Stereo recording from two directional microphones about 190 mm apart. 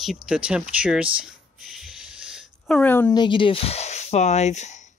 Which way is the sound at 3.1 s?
25° left (ahead or behind).